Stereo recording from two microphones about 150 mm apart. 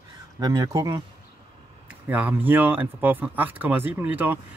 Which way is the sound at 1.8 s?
10° right (ahead or behind).